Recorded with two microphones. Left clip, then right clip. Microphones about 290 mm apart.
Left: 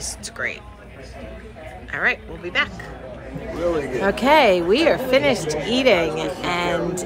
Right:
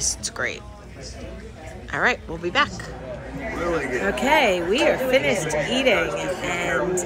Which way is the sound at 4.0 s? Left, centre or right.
Centre.